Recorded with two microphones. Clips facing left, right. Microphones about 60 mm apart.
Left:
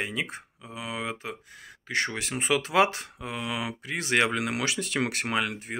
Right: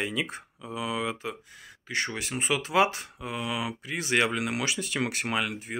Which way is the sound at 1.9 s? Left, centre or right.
Left.